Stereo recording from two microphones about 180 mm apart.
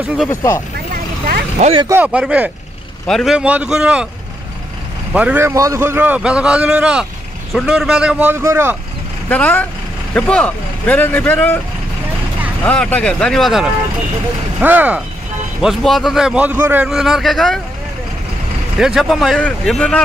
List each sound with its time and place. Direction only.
0.3 s speech: 15° left (ahead or behind)
1.2 s speech: 50° right (ahead or behind)
1.9 s a man's voice: 10° right (ahead or behind)
5.1 s a man's voice: 10° right (ahead or behind)
9.3 s speech: 10° left (ahead or behind)
12.6 s a man's voice: 5° left (ahead or behind)
18.8 s a man's voice: centre (ahead or behind)